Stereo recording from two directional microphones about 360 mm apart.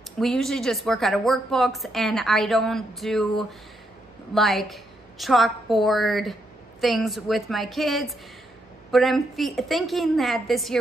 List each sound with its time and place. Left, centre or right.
0.2 s a woman's voice: centre